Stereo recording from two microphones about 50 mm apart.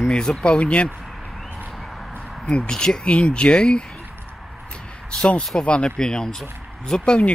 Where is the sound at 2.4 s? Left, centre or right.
Centre.